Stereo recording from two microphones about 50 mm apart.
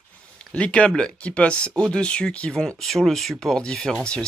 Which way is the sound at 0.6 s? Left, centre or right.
Left.